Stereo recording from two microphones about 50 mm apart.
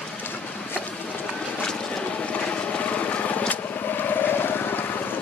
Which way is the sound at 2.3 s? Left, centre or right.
Left.